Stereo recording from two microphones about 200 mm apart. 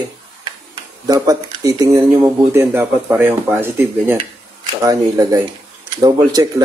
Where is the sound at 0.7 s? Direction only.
20° right (ahead or behind).